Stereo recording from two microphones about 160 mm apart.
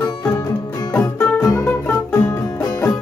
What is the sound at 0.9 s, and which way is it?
Music, 15° left (ahead or behind).